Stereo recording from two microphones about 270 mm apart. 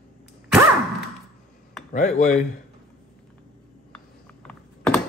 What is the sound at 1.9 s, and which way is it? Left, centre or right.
Speech, left.